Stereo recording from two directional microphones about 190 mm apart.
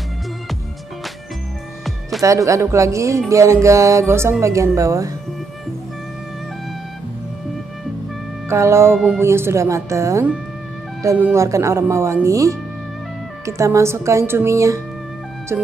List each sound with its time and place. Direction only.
2.2 s speech: 15° right (ahead or behind)
8.5 s speech: 15° right (ahead or behind)
8.9 s speech: centre (ahead or behind)
9.2 s speech: 15° right (ahead or behind)